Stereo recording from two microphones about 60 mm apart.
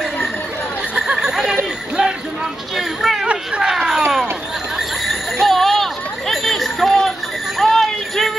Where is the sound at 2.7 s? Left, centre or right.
Centre.